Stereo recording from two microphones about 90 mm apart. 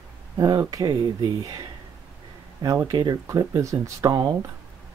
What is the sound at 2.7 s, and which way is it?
Speech, 35° right (ahead or behind).